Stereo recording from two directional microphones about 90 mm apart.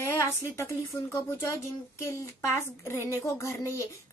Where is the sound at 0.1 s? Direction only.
30° left (ahead or behind).